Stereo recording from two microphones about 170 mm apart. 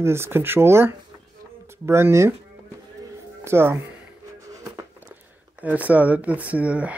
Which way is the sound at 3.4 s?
15° right (ahead or behind).